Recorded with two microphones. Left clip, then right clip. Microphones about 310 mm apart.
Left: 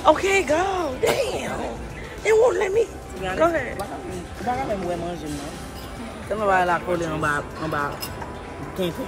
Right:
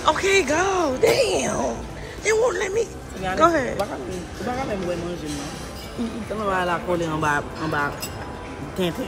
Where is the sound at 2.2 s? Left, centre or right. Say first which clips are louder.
Left 3 dB; centre.